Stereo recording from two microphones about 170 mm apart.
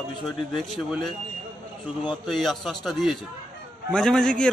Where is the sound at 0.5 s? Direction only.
Centre (ahead or behind).